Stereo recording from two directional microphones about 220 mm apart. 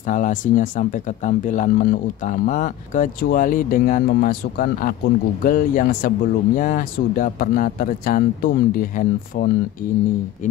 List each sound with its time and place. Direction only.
0.1 s speech: 35° left (ahead or behind)